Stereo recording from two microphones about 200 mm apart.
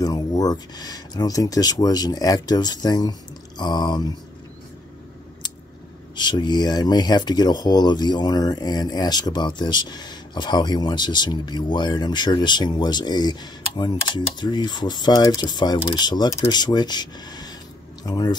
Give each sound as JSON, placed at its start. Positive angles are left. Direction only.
{"t": 0.0, "sound": "speech", "side_deg": 20}
{"t": 6.1, "sound": "speech", "side_deg": 20}